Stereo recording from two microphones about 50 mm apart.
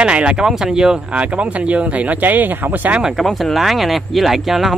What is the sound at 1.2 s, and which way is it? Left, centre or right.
Speech, right.